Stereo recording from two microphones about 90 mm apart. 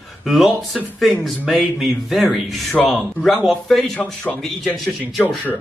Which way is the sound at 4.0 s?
15° left (ahead or behind).